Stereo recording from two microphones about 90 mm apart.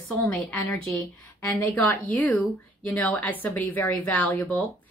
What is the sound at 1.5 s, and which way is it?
A woman's voice, 15° left (ahead or behind).